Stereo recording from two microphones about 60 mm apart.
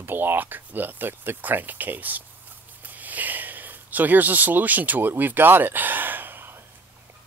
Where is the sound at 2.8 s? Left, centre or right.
Right.